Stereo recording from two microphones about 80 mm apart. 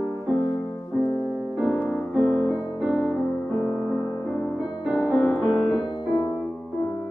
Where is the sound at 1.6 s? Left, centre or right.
Centre.